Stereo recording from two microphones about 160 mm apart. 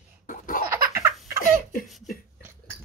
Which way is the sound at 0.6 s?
15° right (ahead or behind).